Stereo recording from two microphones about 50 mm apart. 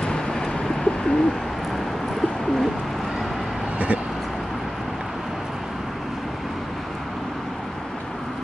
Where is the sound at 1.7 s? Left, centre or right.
Centre.